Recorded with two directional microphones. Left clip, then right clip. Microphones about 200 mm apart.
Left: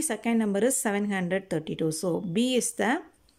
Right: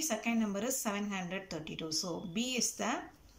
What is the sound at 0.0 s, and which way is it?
Speech, 40° left (ahead or behind).